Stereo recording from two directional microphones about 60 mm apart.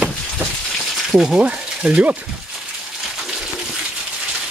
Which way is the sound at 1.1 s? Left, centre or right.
Centre.